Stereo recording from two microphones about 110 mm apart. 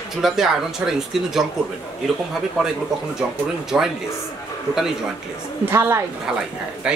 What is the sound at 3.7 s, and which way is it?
Speech, 5° right (ahead or behind).